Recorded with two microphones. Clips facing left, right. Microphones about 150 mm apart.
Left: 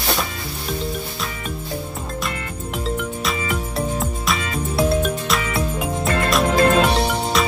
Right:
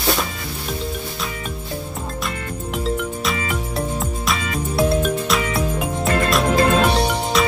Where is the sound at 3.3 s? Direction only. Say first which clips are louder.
Even; centre (ahead or behind).